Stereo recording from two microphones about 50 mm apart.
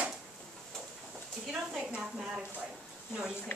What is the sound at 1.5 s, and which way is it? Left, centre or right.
Speech, centre.